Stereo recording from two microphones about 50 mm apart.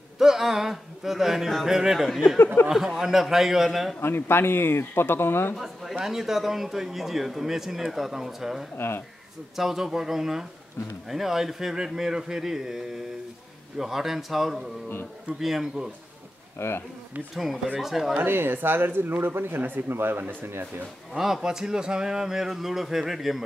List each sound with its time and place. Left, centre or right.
0.2 s a man's voice: centre
2.3 s speech: left
2.7 s speech: centre
4.0 s speech: left
5.6 s a sound: centre
5.9 s a man's voice: centre
8.7 s speech: left
9.6 s a man's voice: centre
16.5 s speech: left
17.7 s a man's voice: centre
18.1 s speech: right
21.2 s speech: centre